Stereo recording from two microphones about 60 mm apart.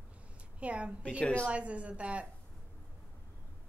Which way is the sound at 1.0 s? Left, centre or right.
Left.